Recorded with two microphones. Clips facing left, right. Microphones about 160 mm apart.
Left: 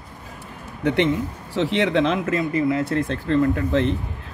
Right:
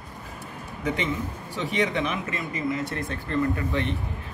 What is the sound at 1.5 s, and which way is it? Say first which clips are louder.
Speech: left 6 dB; 90° left.